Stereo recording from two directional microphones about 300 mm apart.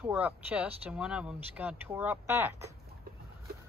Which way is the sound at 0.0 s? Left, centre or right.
Centre.